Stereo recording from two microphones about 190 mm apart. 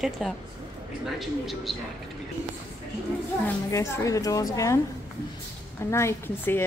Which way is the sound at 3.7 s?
15° left (ahead or behind).